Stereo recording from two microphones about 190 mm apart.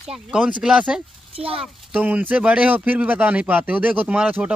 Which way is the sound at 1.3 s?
30° right (ahead or behind).